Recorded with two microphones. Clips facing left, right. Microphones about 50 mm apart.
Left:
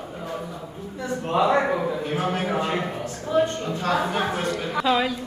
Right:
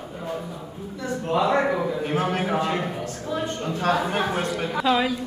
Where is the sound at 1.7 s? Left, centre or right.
Centre.